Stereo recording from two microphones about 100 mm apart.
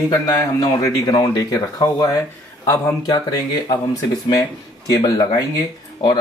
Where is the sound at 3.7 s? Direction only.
35° left (ahead or behind).